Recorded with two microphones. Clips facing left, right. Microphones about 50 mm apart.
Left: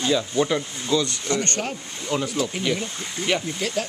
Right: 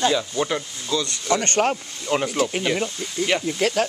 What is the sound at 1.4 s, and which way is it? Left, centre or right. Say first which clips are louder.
Speech: right 6 dB; right.